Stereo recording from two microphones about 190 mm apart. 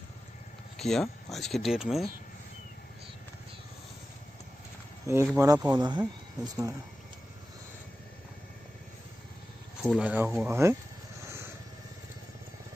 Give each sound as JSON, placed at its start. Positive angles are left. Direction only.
{"t": 0.7, "sound": "speech", "side_deg": 0}
{"t": 5.0, "sound": "speech", "side_deg": -15}
{"t": 9.9, "sound": "speech", "side_deg": -10}
{"t": 11.2, "sound": "vehicle", "side_deg": -15}